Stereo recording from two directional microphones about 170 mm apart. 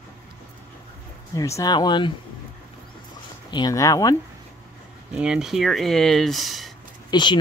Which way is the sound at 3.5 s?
25° left (ahead or behind).